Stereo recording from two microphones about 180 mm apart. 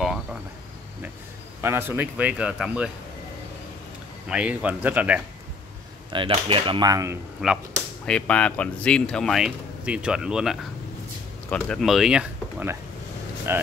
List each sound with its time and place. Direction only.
0.0 s a sound: centre (ahead or behind)
1.6 s a man's voice: 15° right (ahead or behind)
4.3 s a man's voice: 5° right (ahead or behind)
6.0 s speech: 30° right (ahead or behind)
7.4 s speech: 5° right (ahead or behind)
8.0 s a man's voice: 5° left (ahead or behind); by 13.6 s 15° right (ahead or behind)